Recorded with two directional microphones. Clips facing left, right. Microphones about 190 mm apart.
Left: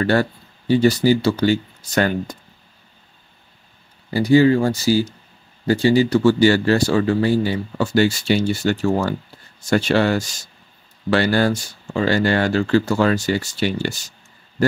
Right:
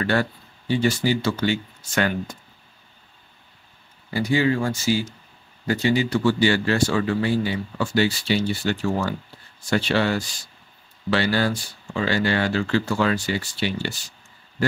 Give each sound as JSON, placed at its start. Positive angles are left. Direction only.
{"t": 0.0, "sound": "speech", "side_deg": 40}
{"t": 4.1, "sound": "speech", "side_deg": 35}